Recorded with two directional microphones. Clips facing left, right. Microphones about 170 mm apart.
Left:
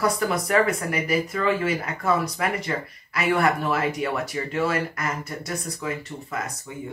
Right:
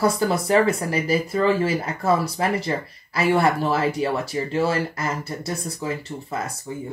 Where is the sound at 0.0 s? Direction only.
30° right (ahead or behind).